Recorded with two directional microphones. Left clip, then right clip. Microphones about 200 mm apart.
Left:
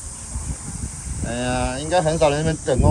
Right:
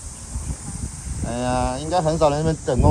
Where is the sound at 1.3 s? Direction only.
20° right (ahead or behind).